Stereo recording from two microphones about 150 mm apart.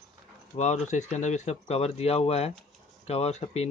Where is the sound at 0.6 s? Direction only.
50° left (ahead or behind).